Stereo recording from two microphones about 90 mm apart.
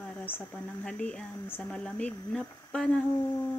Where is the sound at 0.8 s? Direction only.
10° left (ahead or behind).